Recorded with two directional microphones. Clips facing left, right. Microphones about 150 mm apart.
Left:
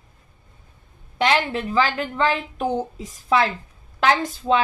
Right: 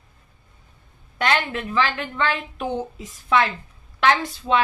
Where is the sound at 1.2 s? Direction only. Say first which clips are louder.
Left 2 dB; 35° left (ahead or behind).